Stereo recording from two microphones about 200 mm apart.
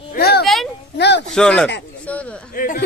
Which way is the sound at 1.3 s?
5° left (ahead or behind).